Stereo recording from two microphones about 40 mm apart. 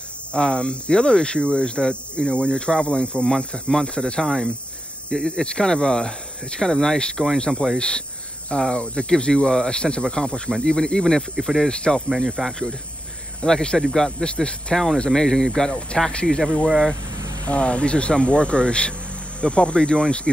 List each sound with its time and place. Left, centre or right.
0.3 s speech: left; by 11.7 s centre
11.7 s speech: left
12.3 s speech: centre
13.5 s speech: centre
15.0 s speech: centre
16.6 s speech: centre
17.5 s speech: left